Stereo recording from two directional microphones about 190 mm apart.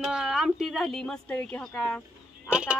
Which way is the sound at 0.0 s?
Centre (ahead or behind).